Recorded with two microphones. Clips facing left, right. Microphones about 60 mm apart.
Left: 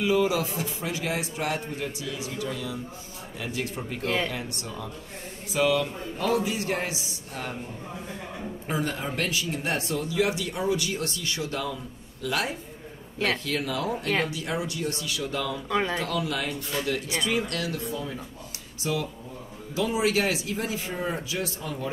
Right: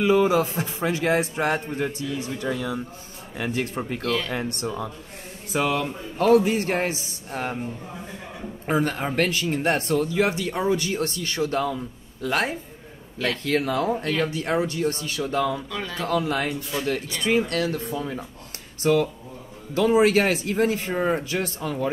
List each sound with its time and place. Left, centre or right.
0.0 s a man's voice: right
4.0 s speech: left
4.3 s a man's voice: right
8.6 s a man's voice: right
15.7 s speech: left
16.1 s a man's voice: right
18.8 s speech: right